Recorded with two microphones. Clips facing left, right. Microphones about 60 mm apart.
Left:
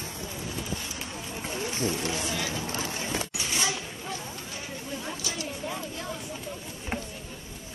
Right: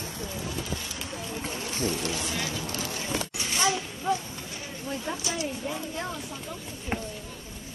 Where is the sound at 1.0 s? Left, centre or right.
Left.